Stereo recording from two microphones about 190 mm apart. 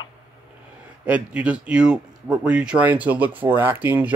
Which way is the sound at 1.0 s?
5° right (ahead or behind).